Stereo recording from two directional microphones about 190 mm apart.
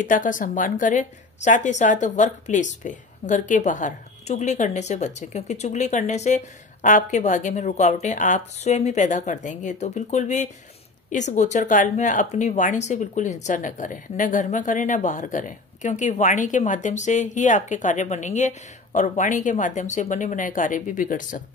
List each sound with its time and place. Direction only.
0.0 s a woman's voice: 45° left (ahead or behind)